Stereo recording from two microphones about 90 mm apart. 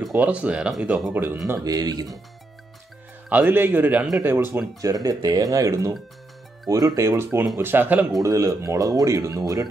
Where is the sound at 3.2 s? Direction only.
20° right (ahead or behind).